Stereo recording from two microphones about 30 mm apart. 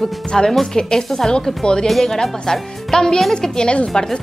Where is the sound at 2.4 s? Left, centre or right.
Centre.